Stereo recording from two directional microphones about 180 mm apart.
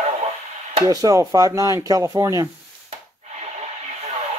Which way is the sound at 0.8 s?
20° right (ahead or behind).